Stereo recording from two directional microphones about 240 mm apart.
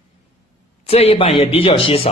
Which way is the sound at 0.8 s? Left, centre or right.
Left.